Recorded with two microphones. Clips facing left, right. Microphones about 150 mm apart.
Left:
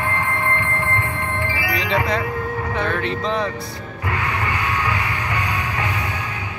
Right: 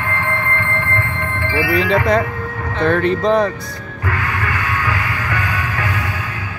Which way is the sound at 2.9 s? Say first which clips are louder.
Right 8 dB; 45° right (ahead or behind).